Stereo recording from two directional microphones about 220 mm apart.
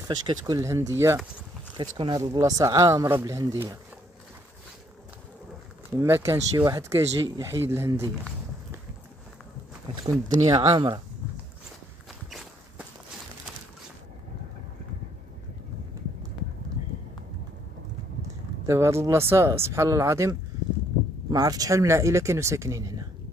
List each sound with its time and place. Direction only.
0.3 s speech: 15° right (ahead or behind)
5.9 s speech: 10° right (ahead or behind)
10.4 s speech: 25° right (ahead or behind)
12.3 s walk: centre (ahead or behind)
18.7 s speech: 10° right (ahead or behind)